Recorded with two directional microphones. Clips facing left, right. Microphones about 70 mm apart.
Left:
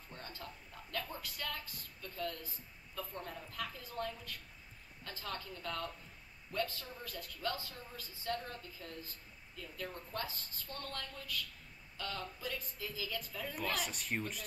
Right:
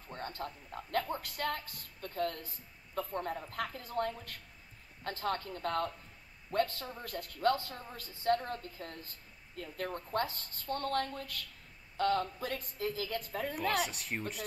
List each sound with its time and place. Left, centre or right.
0.1 s a woman's voice: right
13.8 s speech: centre